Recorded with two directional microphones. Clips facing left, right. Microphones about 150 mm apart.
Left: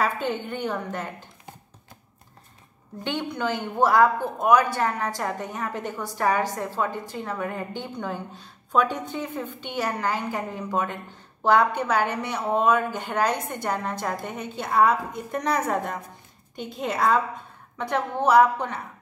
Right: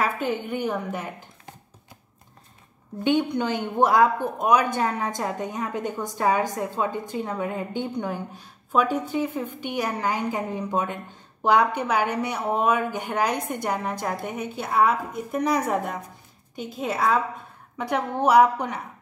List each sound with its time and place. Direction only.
0.0 s a woman's voice: 10° right (ahead or behind)
3.0 s a woman's voice: 15° right (ahead or behind)